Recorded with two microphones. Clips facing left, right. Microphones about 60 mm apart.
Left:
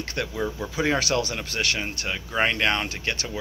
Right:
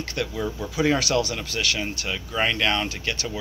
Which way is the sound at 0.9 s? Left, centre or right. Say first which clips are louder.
Right 1 dB; left.